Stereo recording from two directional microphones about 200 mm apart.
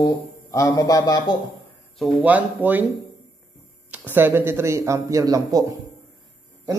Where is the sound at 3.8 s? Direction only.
10° right (ahead or behind).